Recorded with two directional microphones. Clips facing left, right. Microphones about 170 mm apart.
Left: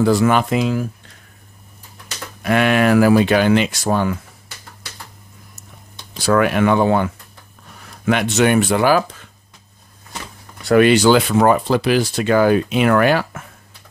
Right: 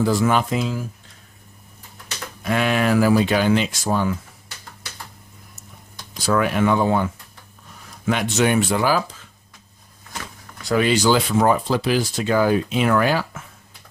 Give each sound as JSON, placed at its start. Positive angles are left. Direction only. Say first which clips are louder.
{"t": 0.0, "sound": "speech", "louder": "left 4 dB", "side_deg": 70}
{"t": 2.4, "sound": "speech", "louder": "left 5 dB", "side_deg": 65}
{"t": 6.1, "sound": "speech", "louder": "left 4 dB", "side_deg": 70}
{"t": 10.6, "sound": "speech", "louder": "left 6 dB", "side_deg": 65}